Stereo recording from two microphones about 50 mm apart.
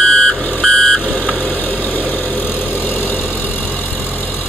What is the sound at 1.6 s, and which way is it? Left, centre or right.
Vehicle, left.